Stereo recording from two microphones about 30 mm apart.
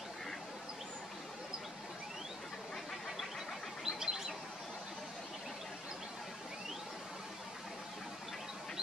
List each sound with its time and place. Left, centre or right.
3.8 s bird: centre